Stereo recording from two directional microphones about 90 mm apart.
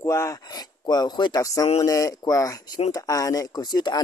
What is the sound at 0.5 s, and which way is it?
Speech, 50° left (ahead or behind).